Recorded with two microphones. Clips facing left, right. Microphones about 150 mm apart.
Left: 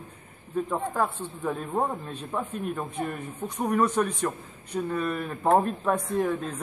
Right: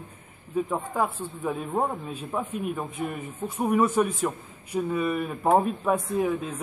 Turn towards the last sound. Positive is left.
turn(degrees=-5)  # may be behind; listen again after turning